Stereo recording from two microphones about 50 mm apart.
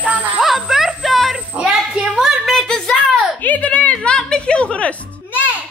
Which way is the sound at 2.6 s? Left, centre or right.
Centre.